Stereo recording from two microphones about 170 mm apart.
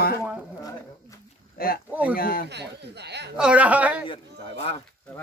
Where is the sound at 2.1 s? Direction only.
60° left (ahead or behind).